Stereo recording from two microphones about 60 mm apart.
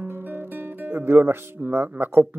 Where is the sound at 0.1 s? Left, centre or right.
Right.